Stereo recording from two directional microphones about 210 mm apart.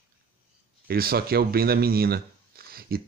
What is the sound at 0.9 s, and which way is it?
Speech, 45° right (ahead or behind).